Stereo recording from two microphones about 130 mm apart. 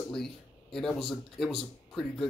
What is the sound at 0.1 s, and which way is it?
Speech, 5° left (ahead or behind).